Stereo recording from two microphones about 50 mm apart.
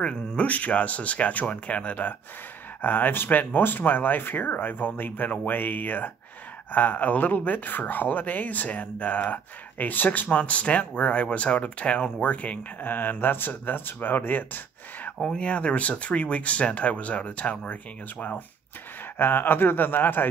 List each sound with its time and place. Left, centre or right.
0.0 s speech: left
12.8 s speech: left
15.3 s speech: left
19.1 s speech: left